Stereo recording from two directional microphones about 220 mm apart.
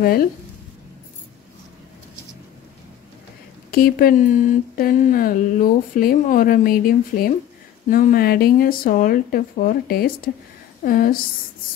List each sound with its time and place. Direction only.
0.0 s speech: 45° left (ahead or behind)
3.7 s a woman's voice: 40° left (ahead or behind)